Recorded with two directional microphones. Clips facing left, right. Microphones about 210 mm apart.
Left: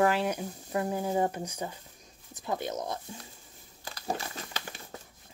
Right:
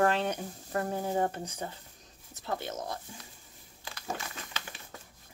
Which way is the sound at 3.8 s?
35° left (ahead or behind).